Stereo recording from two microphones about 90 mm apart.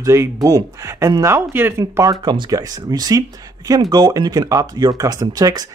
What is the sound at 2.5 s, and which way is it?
Speech, 45° right (ahead or behind).